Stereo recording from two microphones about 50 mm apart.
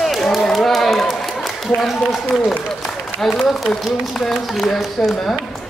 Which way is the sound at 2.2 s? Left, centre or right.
Centre.